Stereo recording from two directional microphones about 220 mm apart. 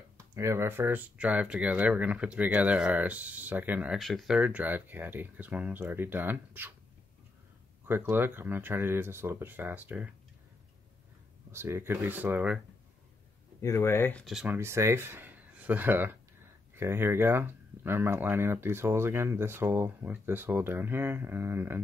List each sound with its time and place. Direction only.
0.3 s speech: 10° right (ahead or behind)
7.8 s speech: 10° right (ahead or behind)
11.5 s speech: 10° right (ahead or behind)
13.6 s speech: 10° left (ahead or behind); by 21.8 s 10° right (ahead or behind)